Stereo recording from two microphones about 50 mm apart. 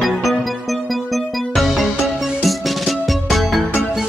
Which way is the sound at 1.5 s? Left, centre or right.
Centre.